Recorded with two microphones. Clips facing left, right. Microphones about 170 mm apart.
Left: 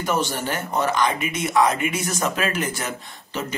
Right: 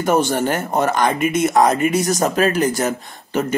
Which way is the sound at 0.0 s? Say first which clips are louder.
Right 7 dB; 50° right (ahead or behind).